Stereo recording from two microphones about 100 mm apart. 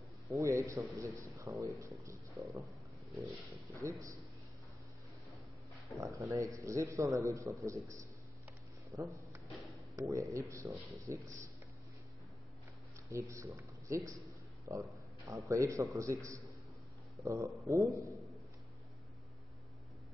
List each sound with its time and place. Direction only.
0.3 s a man's voice: 30° right (ahead or behind)
5.9 s a man's voice: 35° right (ahead or behind)
8.9 s a sound: 30° right (ahead or behind)
10.5 s a man's voice: 30° right (ahead or behind)
13.1 s a man's voice: 30° right (ahead or behind)